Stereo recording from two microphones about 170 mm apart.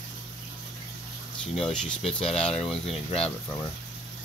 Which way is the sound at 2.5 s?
Centre (ahead or behind).